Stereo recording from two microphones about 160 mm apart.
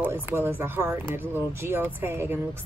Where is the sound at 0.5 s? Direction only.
15° right (ahead or behind).